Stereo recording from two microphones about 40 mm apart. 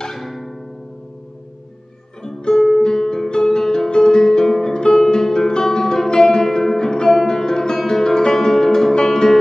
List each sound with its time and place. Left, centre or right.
0.2 s music: centre
2.2 s music: centre